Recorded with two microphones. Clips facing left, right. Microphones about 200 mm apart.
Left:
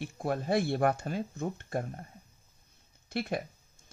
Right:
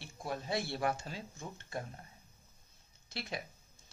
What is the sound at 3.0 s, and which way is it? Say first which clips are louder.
Speech: left 9 dB; 55° left (ahead or behind).